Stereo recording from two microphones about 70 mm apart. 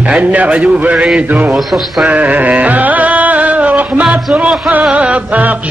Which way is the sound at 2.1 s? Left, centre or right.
Right.